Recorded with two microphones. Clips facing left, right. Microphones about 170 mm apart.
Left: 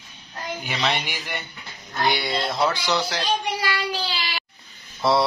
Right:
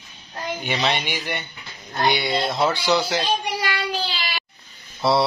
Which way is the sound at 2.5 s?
25° right (ahead or behind).